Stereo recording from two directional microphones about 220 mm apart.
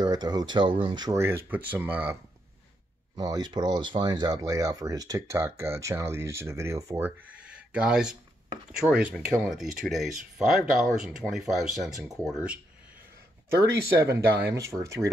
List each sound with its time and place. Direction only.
0.0 s speech: 20° right (ahead or behind)
3.2 s speech: 20° right (ahead or behind)
13.7 s speech: 10° right (ahead or behind)